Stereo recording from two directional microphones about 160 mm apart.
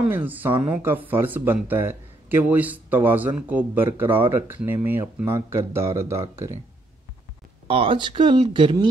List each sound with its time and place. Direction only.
0.0 s speech: 10° right (ahead or behind)
7.6 s speech: 35° right (ahead or behind)